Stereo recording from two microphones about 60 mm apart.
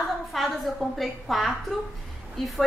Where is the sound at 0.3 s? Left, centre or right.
Centre.